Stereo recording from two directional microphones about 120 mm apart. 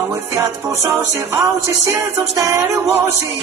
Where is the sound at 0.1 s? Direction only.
20° right (ahead or behind).